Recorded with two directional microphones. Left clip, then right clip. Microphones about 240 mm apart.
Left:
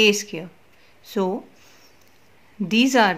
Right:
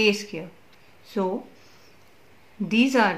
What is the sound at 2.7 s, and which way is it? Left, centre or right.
Speech, left.